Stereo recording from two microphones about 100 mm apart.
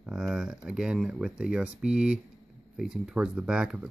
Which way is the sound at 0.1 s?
5° right (ahead or behind).